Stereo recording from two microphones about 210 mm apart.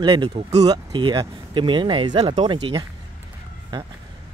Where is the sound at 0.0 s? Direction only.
20° right (ahead or behind).